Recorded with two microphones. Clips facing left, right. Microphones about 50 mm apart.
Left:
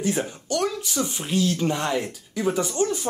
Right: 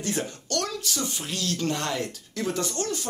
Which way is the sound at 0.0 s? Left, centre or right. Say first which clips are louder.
Left 4 dB; centre.